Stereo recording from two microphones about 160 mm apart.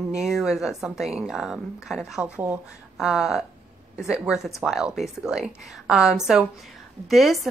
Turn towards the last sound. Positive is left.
turn(degrees=0)  # may be behind; listen again after turning